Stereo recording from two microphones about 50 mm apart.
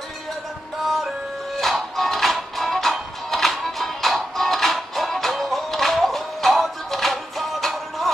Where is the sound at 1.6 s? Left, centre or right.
Centre.